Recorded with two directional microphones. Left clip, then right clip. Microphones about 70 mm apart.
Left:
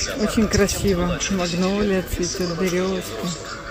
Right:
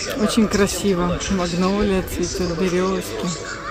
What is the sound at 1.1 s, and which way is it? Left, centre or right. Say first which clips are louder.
Speech: right 1 dB; right.